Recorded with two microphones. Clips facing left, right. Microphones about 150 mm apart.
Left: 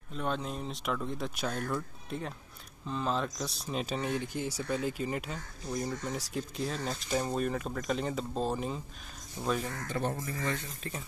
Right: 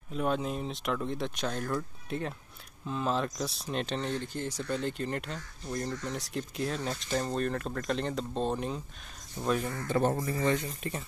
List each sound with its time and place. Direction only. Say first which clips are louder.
0.1 s speech: right 4 dB; 5° right (ahead or behind)
10.0 s speech: right 5 dB; 40° right (ahead or behind)
10.8 s speech: right 4 dB; centre (ahead or behind)